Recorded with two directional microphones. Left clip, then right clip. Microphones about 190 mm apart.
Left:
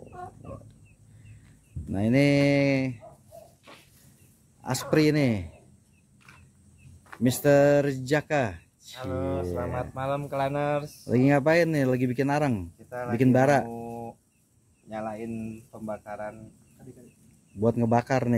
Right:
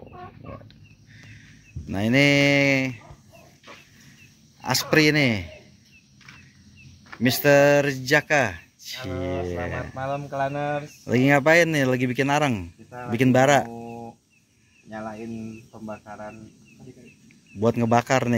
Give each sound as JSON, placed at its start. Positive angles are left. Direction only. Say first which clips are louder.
{"t": 1.9, "sound": "speech", "louder": "right 4 dB", "side_deg": 0}
{"t": 4.6, "sound": "speech", "louder": "right 5 dB", "side_deg": 0}
{"t": 7.1, "sound": "speech", "louder": "right 4 dB", "side_deg": 0}
{"t": 9.9, "sound": "speech", "louder": "right 2 dB", "side_deg": 20}
{"t": 10.8, "sound": "speech", "louder": "right 2 dB", "side_deg": 0}
{"t": 17.6, "sound": "speech", "louder": "right 4 dB", "side_deg": 0}